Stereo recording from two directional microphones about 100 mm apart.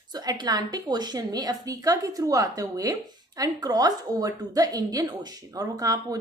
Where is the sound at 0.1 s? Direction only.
40° right (ahead or behind).